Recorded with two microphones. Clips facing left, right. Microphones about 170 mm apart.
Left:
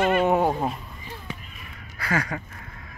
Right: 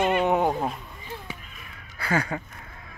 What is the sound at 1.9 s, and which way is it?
Crow, 30° right (ahead or behind).